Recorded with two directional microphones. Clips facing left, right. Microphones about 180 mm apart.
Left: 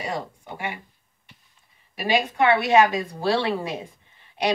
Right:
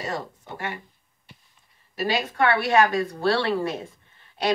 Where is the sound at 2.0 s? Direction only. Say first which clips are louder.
Left 2 dB; 15° left (ahead or behind).